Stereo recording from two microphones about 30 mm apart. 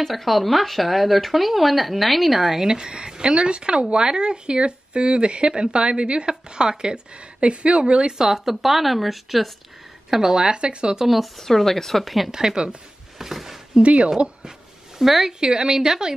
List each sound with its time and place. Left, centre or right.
0.0 s speech: centre
2.6 s speech: right
8.2 s speech: centre
10.1 s speech: centre
10.5 s speech: right
11.1 s speech: centre
11.4 s a woman's voice: centre
12.3 s speech: right
13.2 s speech: centre
13.7 s speech: right
15.0 s speech: centre
15.4 s speech: right